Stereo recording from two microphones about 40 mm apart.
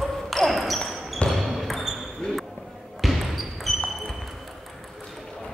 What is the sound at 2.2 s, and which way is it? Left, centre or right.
Basketball bounce, left.